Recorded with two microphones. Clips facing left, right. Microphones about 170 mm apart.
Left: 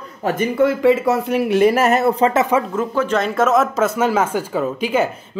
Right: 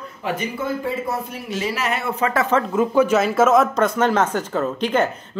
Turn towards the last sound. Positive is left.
turn(degrees=10)  # may be behind; listen again after turning